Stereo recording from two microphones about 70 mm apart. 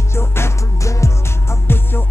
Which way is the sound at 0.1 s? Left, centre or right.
Left.